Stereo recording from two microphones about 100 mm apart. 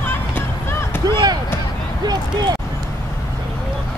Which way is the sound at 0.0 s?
20° left (ahead or behind).